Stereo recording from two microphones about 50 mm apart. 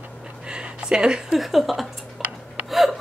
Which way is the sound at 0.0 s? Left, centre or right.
Centre.